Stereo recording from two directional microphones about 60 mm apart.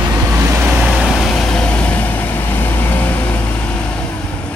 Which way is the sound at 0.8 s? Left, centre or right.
Centre.